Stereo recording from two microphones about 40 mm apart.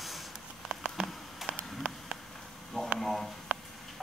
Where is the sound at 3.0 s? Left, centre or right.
Centre.